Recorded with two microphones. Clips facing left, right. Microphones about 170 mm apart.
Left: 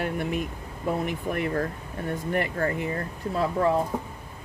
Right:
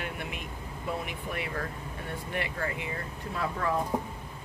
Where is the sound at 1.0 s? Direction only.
45° left (ahead or behind).